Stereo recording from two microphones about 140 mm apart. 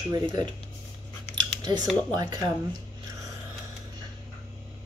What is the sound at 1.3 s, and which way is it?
Scissors, 30° right (ahead or behind).